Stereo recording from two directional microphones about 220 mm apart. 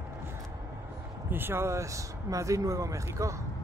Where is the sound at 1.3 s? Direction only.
10° right (ahead or behind).